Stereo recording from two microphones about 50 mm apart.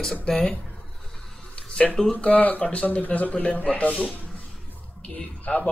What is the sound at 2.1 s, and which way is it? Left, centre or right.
Speech, left.